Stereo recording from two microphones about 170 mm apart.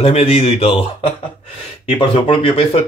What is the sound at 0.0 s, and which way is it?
Speech, 35° left (ahead or behind).